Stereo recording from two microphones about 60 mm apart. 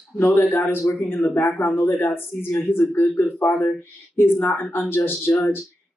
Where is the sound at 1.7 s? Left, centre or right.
Left.